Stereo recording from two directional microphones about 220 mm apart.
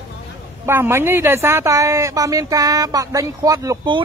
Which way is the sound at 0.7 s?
10° right (ahead or behind).